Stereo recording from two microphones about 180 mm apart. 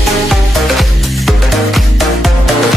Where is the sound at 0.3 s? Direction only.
Centre (ahead or behind).